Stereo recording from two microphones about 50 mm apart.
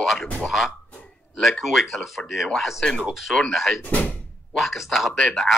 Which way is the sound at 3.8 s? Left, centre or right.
Left.